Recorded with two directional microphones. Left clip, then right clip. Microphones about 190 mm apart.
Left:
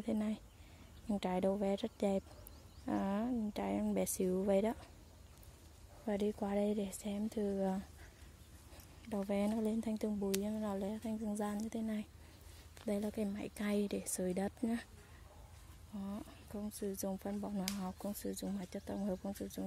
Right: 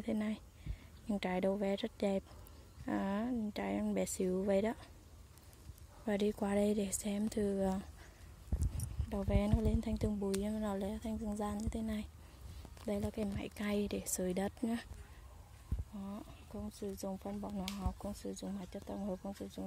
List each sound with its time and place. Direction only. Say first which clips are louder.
0.0 s a sound: even; centre (ahead or behind)
1.0 s speech: even; centre (ahead or behind)
6.0 s speech: right 2 dB; 5° right (ahead or behind)
9.1 s speech: even; 5° left (ahead or behind)
16.0 s speech: left 2 dB; 10° left (ahead or behind)